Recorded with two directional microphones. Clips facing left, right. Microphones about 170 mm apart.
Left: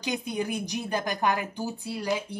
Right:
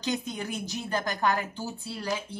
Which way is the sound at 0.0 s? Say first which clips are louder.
Left 2 dB; 15° left (ahead or behind).